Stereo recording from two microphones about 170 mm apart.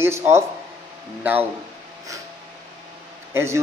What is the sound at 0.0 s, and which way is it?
Speech, 15° right (ahead or behind).